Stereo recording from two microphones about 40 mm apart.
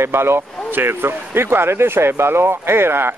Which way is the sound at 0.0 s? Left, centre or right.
Right.